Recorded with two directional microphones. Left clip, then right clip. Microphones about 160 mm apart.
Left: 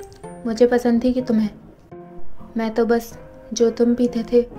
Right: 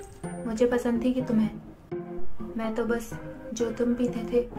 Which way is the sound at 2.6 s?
35° left (ahead or behind).